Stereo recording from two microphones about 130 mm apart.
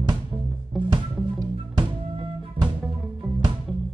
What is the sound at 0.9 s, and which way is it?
Music, 35° right (ahead or behind).